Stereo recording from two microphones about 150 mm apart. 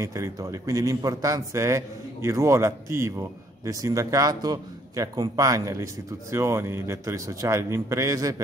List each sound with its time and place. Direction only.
0.0 s a man's voice: 20° right (ahead or behind)